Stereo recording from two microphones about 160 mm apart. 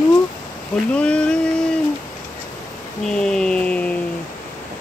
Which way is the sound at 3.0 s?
5° left (ahead or behind).